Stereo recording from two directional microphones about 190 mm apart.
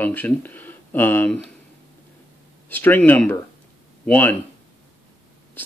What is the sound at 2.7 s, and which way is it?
Speech, 10° left (ahead or behind).